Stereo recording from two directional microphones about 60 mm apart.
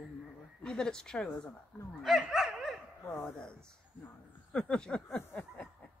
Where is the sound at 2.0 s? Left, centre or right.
Centre.